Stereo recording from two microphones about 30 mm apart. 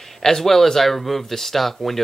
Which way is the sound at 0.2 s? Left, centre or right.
Centre.